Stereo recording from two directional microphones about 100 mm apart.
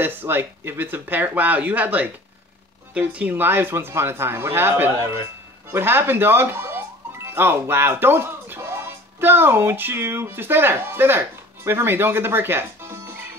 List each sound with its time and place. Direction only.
0.0 s speech: 20° right (ahead or behind)